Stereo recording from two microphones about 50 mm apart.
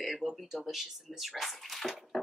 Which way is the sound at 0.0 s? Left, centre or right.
Centre.